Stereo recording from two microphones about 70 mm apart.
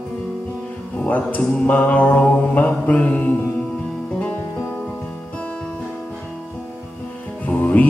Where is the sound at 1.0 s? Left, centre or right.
Left.